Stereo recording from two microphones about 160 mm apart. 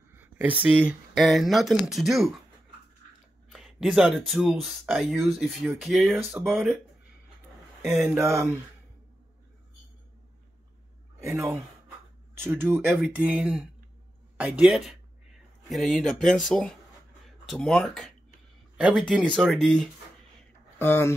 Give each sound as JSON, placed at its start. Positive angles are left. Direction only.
{"t": 0.1, "sound": "speech", "side_deg": -10}
{"t": 3.5, "sound": "speech", "side_deg": -5}
{"t": 8.2, "sound": "speech", "side_deg": -15}
{"t": 11.3, "sound": "speech", "side_deg": -15}
{"t": 20.8, "sound": "speech", "side_deg": 15}